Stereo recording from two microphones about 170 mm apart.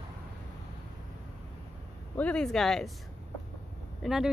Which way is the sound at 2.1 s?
5° left (ahead or behind).